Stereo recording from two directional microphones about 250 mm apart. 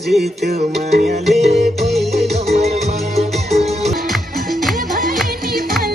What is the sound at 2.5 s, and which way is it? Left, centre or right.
Music, right.